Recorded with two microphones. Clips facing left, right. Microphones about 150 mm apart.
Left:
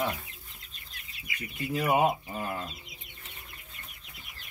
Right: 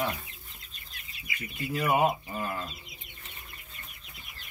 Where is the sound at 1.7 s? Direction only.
15° left (ahead or behind).